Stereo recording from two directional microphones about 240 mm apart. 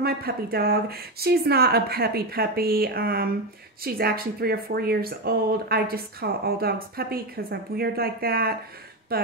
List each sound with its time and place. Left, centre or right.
0.0 s speech: right